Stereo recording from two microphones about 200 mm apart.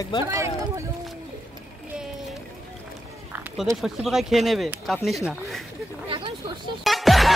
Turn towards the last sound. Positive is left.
turn(degrees=0)  # may be behind; listen again after turning